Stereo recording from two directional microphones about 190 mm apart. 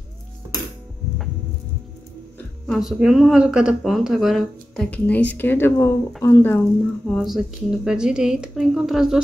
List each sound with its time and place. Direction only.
2.6 s speech: centre (ahead or behind)
7.1 s speech: centre (ahead or behind)